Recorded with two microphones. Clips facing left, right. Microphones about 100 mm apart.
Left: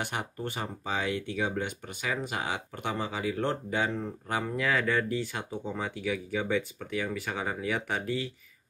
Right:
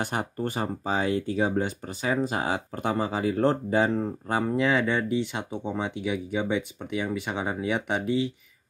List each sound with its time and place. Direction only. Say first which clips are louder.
0.0 s speech: right 5 dB; 40° right (ahead or behind)
4.6 s speech: right 3 dB; 20° right (ahead or behind)